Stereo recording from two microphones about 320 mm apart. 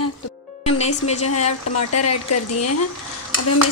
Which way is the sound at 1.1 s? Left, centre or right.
Left.